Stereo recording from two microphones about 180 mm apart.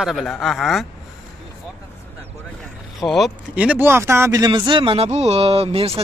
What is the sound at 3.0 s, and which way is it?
Speech, centre (ahead or behind).